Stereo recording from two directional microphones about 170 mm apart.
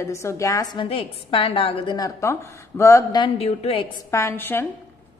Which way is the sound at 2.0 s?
15° left (ahead or behind).